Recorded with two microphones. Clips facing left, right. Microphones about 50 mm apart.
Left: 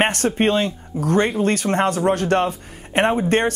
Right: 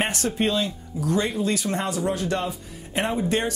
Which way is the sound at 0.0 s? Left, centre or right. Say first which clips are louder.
Left 6 dB; left.